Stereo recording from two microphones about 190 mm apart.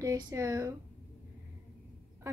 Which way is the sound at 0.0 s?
15° right (ahead or behind).